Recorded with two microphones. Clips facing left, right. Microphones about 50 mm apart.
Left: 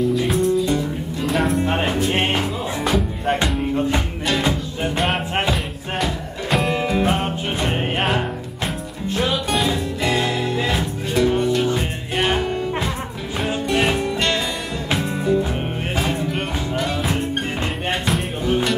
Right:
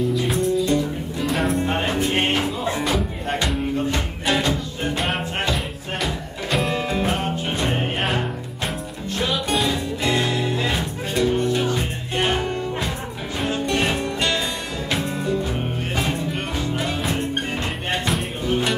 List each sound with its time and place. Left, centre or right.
0.0 s music: centre
4.9 s music: centre
11.1 s music: centre
16.7 s music: centre
18.0 s music: centre